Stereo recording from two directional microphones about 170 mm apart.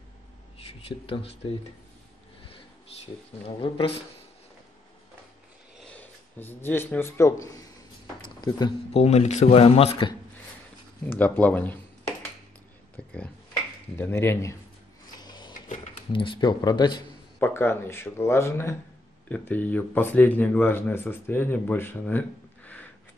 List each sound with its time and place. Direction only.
0.8 s speech: 35° left (ahead or behind)
3.4 s speech: 30° left (ahead or behind)
5.8 s speech: 10° left (ahead or behind); by 9.0 s 25° left (ahead or behind)
9.0 s speech: 40° left (ahead or behind)
11.1 s speech: 10° left (ahead or behind)
12.9 s speech: 5° left (ahead or behind)
15.1 s drawer open or close: 25° left (ahead or behind)
16.1 s speech: 30° left (ahead or behind)
17.4 s speech: 15° left (ahead or behind)